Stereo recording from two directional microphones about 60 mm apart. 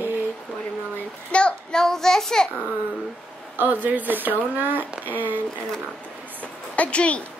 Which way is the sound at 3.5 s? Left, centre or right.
Right.